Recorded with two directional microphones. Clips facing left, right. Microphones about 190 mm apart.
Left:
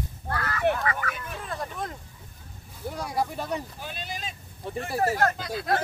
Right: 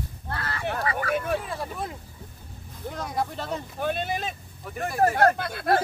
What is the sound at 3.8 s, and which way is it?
Speech, 55° right (ahead or behind).